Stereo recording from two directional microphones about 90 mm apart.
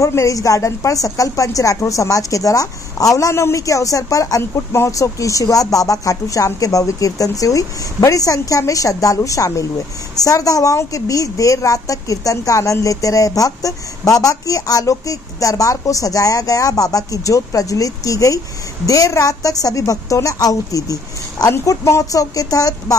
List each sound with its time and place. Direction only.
0.0 s a woman's voice: 35° left (ahead or behind)